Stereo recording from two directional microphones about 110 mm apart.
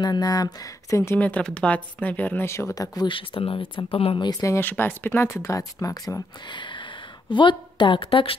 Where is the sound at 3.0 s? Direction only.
55° left (ahead or behind).